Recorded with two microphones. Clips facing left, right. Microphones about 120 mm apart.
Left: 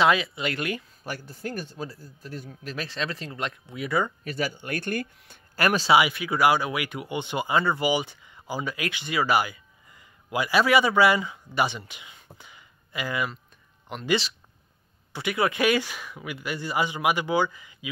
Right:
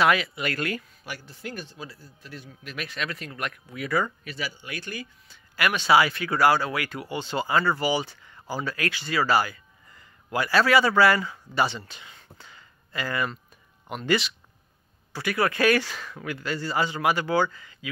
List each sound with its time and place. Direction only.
0.0 s speech: 20° left (ahead or behind)
1.0 s a man's voice: 45° left (ahead or behind); by 4.1 s 25° left (ahead or behind)
4.2 s speech: 45° left (ahead or behind)
5.6 s a man's voice: 40° left (ahead or behind)
5.9 s speech: 15° left (ahead or behind)
13.9 s speech: 5° right (ahead or behind)
15.1 s speech: 20° left (ahead or behind)